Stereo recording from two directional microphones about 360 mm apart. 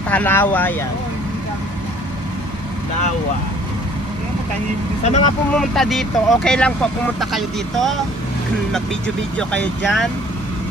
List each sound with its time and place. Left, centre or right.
0.1 s speech: centre
5.0 s speech: centre
5.5 s speech: centre